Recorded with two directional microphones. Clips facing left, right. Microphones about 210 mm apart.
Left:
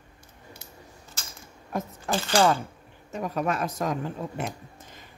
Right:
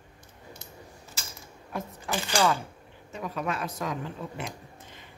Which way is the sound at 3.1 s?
45° left (ahead or behind).